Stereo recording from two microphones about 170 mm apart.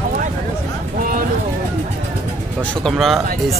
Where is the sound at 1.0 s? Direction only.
55° right (ahead or behind).